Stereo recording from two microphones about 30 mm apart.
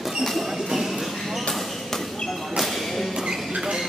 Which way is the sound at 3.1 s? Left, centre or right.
Centre.